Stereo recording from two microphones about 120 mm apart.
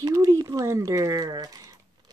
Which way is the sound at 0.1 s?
25° right (ahead or behind).